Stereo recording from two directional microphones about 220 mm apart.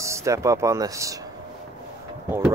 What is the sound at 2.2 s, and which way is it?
Speech, 10° right (ahead or behind).